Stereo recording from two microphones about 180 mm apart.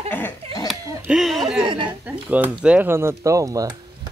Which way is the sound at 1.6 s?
25° right (ahead or behind).